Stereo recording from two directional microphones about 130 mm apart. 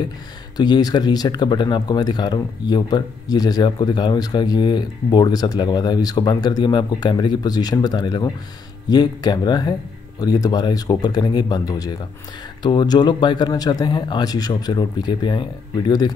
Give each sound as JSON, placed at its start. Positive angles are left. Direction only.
{"t": 0.6, "sound": "speech", "side_deg": 30}